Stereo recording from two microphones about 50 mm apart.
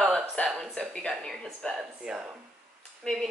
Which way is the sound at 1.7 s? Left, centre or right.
Centre.